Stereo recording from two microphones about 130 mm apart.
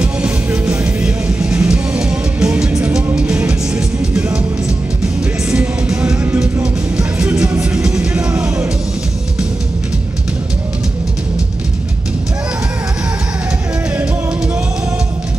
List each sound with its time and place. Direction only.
0.0 s music: 10° right (ahead or behind)
8.3 s music: 20° right (ahead or behind)